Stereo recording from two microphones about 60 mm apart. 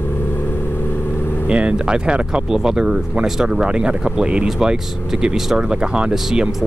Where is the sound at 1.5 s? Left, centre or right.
Centre.